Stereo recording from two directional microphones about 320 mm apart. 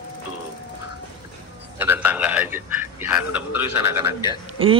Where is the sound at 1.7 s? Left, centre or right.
Centre.